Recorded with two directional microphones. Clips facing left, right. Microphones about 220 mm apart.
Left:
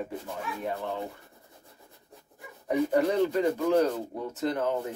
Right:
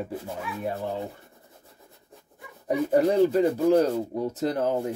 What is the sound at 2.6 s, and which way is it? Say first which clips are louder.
Speech: right 3 dB; 35° right (ahead or behind).